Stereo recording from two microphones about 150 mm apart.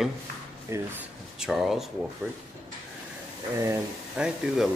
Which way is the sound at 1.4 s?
Centre (ahead or behind).